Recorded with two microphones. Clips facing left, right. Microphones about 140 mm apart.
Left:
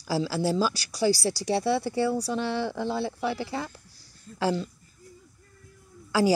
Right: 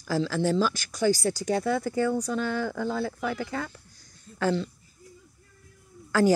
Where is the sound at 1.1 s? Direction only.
35° left (ahead or behind).